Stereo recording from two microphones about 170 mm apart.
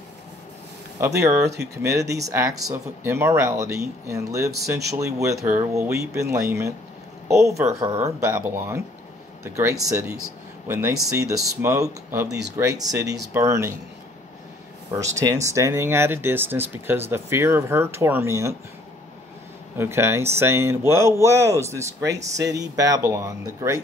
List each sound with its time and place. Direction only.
0.9 s speech: 20° right (ahead or behind)
14.9 s speech: 20° right (ahead or behind)
19.8 s speech: 15° right (ahead or behind)